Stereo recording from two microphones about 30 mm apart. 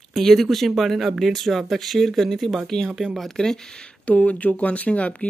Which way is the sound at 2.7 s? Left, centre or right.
Left.